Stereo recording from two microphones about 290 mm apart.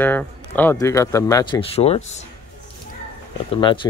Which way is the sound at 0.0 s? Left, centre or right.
Centre.